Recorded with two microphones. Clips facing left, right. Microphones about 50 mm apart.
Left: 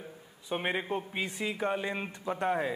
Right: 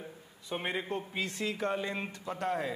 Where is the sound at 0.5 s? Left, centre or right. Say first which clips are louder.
Left 3 dB; centre.